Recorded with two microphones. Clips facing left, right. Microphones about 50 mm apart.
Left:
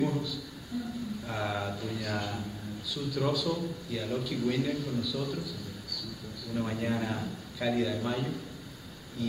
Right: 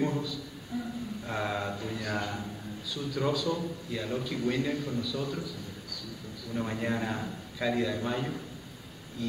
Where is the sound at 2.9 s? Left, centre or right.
Centre.